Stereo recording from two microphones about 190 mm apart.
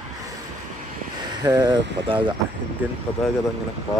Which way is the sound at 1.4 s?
20° right (ahead or behind).